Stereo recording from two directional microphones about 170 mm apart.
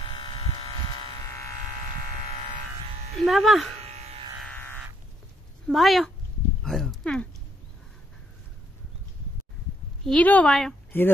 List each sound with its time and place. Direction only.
0.1 s electric shaver: 30° left (ahead or behind)
1.8 s electric shaver: 50° right (ahead or behind)
3.3 s a woman's voice: centre (ahead or behind)
3.7 s electric shaver: 40° right (ahead or behind)
4.4 s a sound: 10° left (ahead or behind)
5.7 s a woman's voice: centre (ahead or behind)
10.0 s a woman's voice: 10° left (ahead or behind)